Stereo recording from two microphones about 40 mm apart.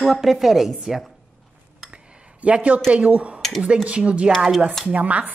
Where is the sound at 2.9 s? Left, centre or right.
Right.